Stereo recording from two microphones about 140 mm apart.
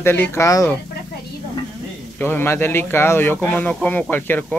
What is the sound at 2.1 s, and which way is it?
Speech, 15° left (ahead or behind).